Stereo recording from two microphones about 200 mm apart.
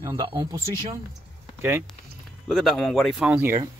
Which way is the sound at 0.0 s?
15° right (ahead or behind).